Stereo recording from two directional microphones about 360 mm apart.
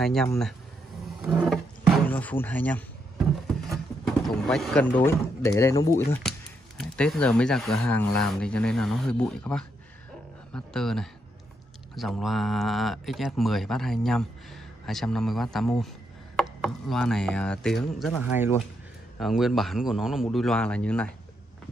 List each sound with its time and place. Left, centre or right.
0.0 s speech: centre
1.0 s a sound: centre
3.7 s speech: centre